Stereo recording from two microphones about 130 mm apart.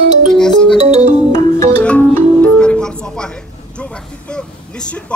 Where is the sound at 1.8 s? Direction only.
10° left (ahead or behind).